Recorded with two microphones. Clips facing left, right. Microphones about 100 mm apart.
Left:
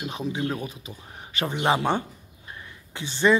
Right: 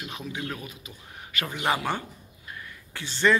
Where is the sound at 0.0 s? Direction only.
30° left (ahead or behind).